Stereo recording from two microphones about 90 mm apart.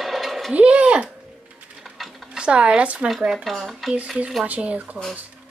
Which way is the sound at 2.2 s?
10° right (ahead or behind).